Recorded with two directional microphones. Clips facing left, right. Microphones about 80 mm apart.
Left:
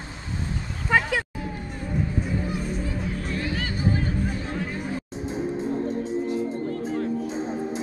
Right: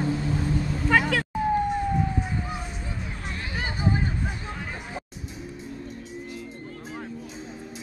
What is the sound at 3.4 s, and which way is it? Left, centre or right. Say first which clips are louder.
Music: right 1 dB; right.